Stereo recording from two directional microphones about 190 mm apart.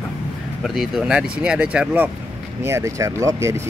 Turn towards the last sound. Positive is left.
turn(degrees=-15)  # may be behind; listen again after turning